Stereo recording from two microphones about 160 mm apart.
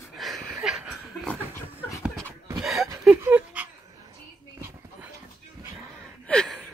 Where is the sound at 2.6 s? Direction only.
Centre (ahead or behind).